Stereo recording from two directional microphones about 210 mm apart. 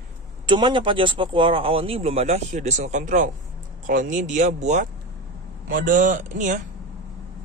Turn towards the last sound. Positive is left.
turn(degrees=-35)  # may be behind; listen again after turning